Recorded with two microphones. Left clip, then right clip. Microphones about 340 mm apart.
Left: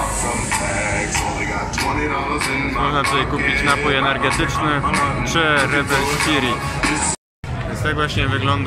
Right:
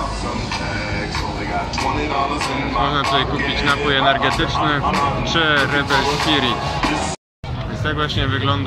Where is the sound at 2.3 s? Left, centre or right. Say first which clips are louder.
Even; right.